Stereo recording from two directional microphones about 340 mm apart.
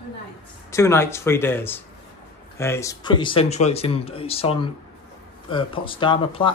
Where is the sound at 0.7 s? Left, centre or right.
Centre.